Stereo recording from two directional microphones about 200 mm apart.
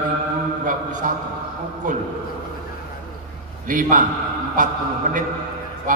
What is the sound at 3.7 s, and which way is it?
Speech, 40° right (ahead or behind).